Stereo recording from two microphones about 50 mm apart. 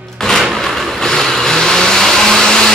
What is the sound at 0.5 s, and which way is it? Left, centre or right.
Vehicle, centre.